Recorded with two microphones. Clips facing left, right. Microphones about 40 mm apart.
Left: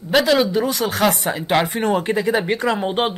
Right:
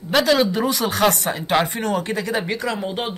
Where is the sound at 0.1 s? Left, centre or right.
Centre.